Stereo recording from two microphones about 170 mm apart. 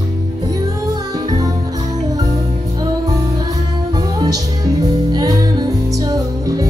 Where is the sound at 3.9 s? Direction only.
25° right (ahead or behind).